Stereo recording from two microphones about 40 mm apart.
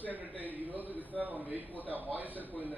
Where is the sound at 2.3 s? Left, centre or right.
Left.